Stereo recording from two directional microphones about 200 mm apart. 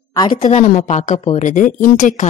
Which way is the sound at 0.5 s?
35° left (ahead or behind).